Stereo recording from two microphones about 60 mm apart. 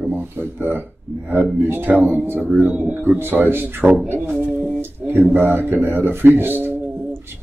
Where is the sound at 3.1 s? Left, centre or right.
Right.